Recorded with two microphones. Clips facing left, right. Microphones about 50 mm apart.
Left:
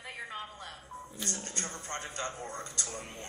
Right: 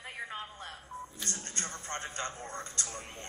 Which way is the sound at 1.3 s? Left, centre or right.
Right.